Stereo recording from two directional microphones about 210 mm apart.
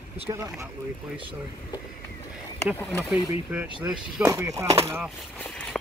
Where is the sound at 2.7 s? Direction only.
10° left (ahead or behind).